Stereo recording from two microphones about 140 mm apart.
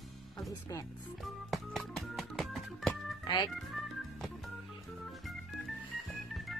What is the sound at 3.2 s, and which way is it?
Speech, 30° left (ahead or behind).